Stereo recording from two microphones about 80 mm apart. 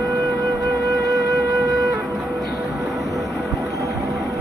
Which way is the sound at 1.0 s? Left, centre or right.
Right.